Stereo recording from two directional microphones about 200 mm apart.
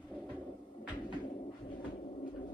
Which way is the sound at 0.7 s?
30° left (ahead or behind).